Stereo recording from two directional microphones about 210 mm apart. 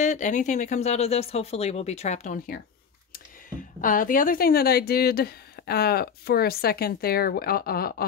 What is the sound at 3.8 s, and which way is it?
A woman's voice, 40° left (ahead or behind).